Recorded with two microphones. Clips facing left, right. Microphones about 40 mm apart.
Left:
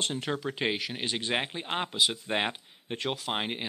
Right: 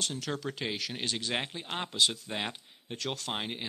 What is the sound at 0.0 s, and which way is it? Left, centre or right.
Speech, left.